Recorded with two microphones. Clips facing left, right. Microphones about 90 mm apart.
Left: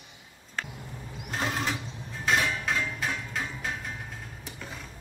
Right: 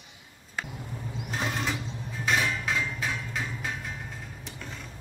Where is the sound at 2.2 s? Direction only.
Centre (ahead or behind).